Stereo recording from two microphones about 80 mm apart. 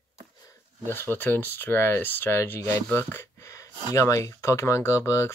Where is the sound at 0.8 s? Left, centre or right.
Left.